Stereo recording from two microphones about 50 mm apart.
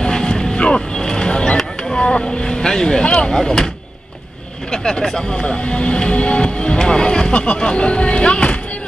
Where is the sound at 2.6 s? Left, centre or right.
Centre.